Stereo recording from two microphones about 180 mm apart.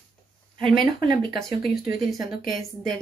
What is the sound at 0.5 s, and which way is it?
Speech, 25° right (ahead or behind).